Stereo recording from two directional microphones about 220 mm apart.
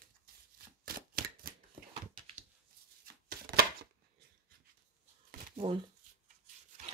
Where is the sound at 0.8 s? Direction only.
40° right (ahead or behind).